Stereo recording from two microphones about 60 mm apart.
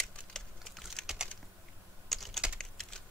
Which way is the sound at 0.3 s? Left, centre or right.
Centre.